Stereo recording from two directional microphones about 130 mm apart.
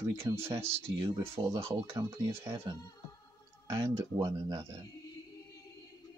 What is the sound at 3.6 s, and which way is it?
Speech, 25° right (ahead or behind).